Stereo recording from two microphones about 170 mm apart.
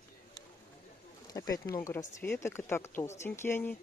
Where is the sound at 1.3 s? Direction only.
20° left (ahead or behind).